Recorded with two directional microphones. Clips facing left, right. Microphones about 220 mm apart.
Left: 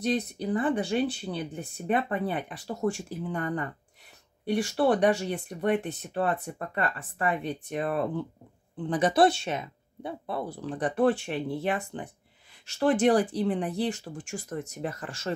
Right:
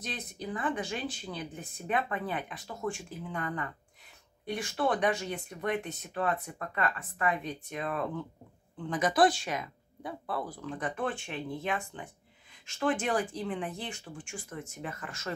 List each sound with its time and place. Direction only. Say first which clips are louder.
0.1 s speech: left 9 dB; 35° left (ahead or behind)